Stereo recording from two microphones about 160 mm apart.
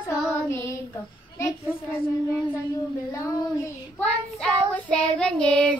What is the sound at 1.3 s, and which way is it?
A child's voice, 20° left (ahead or behind).